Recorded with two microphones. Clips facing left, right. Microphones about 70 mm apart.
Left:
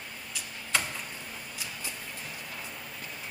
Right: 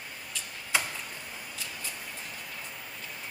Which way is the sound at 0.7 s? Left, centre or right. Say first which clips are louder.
Even; centre.